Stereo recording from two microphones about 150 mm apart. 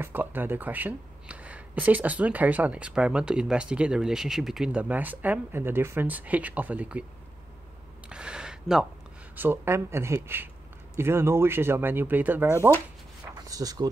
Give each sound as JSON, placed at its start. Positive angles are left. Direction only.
{"t": 0.0, "sound": "speech", "side_deg": -15}
{"t": 8.1, "sound": "a sound", "side_deg": -5}
{"t": 9.3, "sound": "speech", "side_deg": -15}